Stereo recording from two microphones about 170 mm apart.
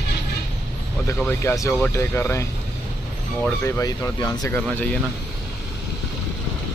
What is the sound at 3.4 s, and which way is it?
Speech, 15° left (ahead or behind).